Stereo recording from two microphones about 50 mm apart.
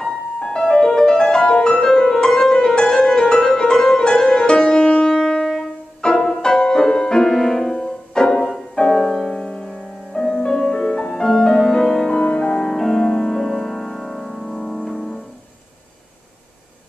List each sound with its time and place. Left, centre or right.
0.0 s music: centre
8.9 s music: centre
9.3 s music: centre
12.1 s music: centre